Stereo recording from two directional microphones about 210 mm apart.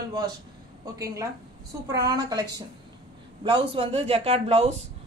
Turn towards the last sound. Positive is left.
turn(degrees=-30)  # may be behind; listen again after turning